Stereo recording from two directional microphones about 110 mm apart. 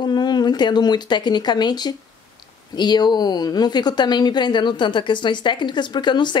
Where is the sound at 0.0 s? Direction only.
40° left (ahead or behind).